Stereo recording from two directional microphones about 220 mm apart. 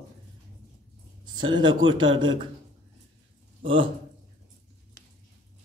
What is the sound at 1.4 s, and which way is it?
Speech, 20° right (ahead or behind).